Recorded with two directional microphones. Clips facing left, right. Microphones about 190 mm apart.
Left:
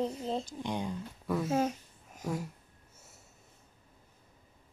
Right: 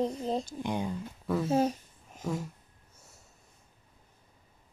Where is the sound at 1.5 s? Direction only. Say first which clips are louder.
Right 5 dB; 35° right (ahead or behind).